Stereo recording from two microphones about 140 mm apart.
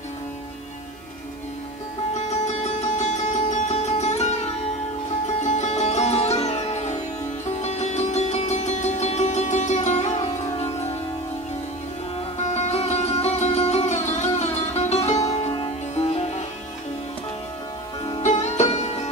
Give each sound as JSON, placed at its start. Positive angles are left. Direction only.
{"t": 2.1, "sound": "music", "side_deg": 55}
{"t": 12.4, "sound": "music", "side_deg": 55}
{"t": 18.2, "sound": "music", "side_deg": 55}